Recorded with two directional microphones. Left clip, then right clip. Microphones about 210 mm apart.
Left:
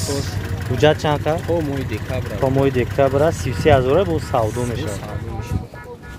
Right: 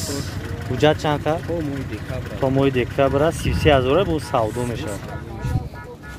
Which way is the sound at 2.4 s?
10° right (ahead or behind).